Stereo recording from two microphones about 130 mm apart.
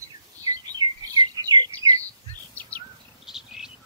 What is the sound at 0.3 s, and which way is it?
Chirp, 25° right (ahead or behind).